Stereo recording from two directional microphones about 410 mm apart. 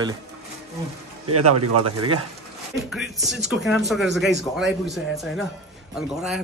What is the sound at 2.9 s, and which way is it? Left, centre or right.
Speech, centre.